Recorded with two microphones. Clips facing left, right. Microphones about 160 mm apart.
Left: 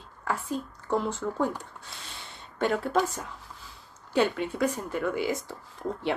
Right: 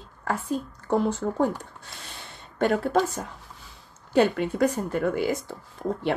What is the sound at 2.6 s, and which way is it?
Speech, 45° right (ahead or behind).